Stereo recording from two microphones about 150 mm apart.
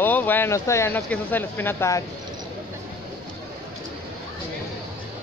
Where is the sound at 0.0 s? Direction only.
10° left (ahead or behind).